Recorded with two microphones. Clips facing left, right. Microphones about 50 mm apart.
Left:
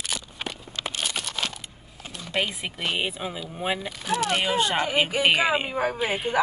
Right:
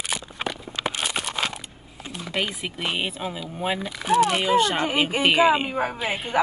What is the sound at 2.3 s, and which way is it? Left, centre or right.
A woman's voice, centre.